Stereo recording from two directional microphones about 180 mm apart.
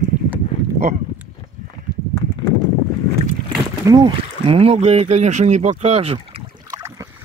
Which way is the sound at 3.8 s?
25° right (ahead or behind).